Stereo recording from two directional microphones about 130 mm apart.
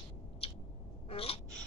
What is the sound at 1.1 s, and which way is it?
Gasp, 50° left (ahead or behind).